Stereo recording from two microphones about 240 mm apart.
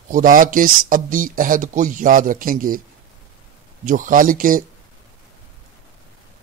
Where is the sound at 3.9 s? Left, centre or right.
Right.